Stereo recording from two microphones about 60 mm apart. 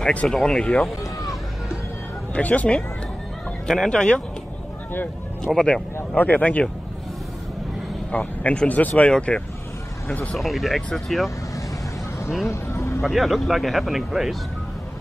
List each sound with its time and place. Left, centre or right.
0.3 s speech: centre
2.3 s speech: left
3.6 s speech: centre
5.4 s speech: centre
6.1 s speech: left
8.1 s speech: left
10.3 s speech: centre
12.4 s vehicle: left
13.0 s speech: centre